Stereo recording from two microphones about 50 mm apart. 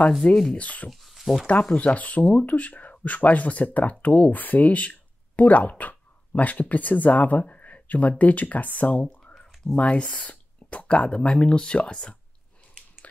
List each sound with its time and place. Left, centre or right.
0.2 s speech: left
0.8 s speech: centre
1.8 s speech: left
9.0 s a sound: centre
9.8 s speech: left